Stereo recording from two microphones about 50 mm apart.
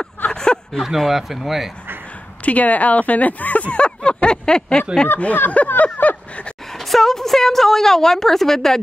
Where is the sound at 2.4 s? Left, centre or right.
Left.